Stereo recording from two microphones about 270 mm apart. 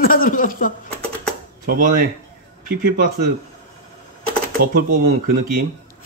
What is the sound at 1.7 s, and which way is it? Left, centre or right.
Speech, right.